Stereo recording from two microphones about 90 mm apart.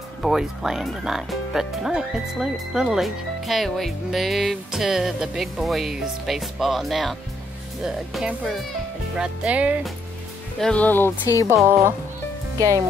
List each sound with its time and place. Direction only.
0.2 s speech: 5° right (ahead or behind)
10.6 s speech: 15° left (ahead or behind)
11.4 s speech: 30° right (ahead or behind)